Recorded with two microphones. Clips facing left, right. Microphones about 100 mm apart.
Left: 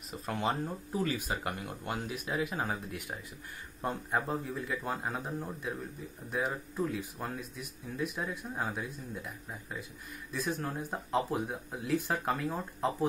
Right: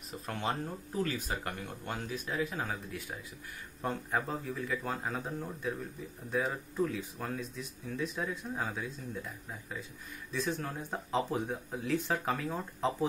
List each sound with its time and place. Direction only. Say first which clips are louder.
0.3 s speech: left 3 dB; centre (ahead or behind)